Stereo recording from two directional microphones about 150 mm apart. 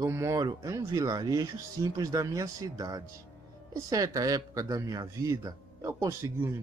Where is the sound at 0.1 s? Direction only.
20° right (ahead or behind).